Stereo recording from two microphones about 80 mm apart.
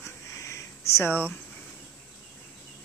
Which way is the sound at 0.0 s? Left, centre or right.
Left.